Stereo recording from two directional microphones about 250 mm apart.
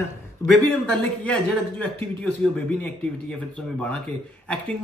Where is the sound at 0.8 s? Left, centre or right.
Centre.